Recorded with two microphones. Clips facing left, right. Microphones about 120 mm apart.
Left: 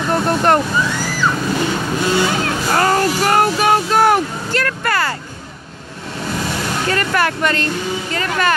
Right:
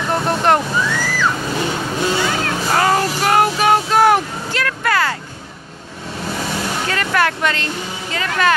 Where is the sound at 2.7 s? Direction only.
Centre (ahead or behind).